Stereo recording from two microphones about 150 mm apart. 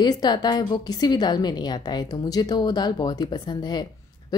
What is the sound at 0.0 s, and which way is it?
A woman's voice, 25° left (ahead or behind).